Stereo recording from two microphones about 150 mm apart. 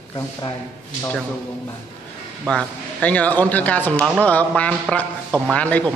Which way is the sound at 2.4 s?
10° left (ahead or behind).